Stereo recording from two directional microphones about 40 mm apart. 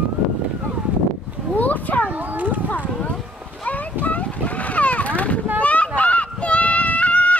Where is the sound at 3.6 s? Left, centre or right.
Left.